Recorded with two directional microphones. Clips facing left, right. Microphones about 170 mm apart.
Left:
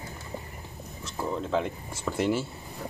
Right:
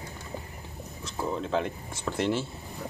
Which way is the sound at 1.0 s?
Centre (ahead or behind).